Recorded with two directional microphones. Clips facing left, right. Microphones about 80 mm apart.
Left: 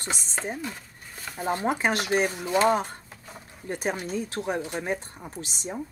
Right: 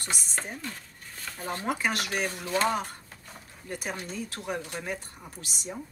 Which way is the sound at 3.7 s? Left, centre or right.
Left.